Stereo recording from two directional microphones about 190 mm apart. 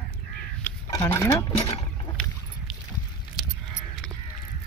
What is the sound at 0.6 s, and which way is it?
Speech, 15° left (ahead or behind).